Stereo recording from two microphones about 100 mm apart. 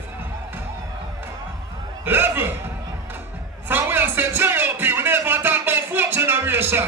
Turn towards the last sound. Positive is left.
turn(degrees=-25)  # may be behind; listen again after turning